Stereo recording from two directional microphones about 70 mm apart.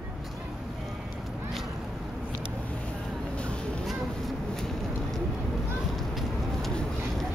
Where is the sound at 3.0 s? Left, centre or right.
Centre.